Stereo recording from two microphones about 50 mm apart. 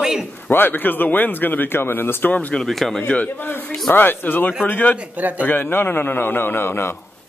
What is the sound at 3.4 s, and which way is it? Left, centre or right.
A man's voice, left.